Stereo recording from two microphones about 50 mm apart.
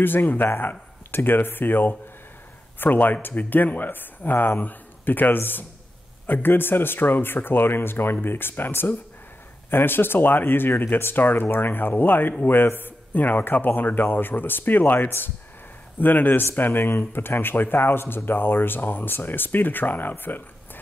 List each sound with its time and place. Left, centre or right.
0.0 s speech: left